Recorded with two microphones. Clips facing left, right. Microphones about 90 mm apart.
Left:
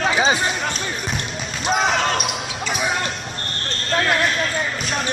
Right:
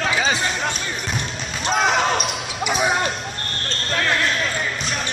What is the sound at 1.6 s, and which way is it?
Basketball bounce, centre (ahead or behind).